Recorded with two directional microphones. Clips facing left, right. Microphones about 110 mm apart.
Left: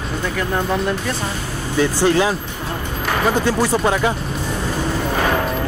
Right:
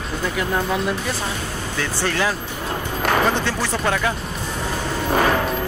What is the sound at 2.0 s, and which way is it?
Speech, 20° left (ahead or behind).